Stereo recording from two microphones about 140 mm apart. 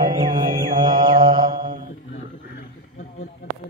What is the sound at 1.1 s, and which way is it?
Mantra, 85° right.